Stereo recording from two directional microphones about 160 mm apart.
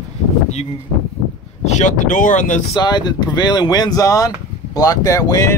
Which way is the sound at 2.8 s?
25° left (ahead or behind).